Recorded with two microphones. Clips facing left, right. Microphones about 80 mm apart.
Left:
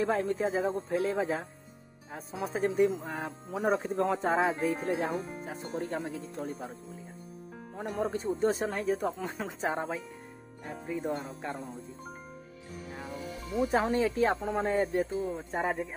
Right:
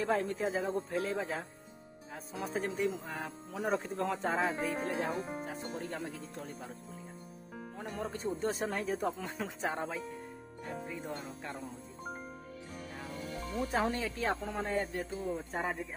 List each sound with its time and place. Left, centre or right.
0.0 s speech: centre
3.5 s speech: centre
5.8 s speech: centre
7.7 s speech: centre
12.9 s speech: centre
15.0 s speech: centre